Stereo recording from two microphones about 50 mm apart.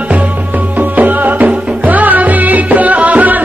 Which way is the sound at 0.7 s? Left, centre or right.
Right.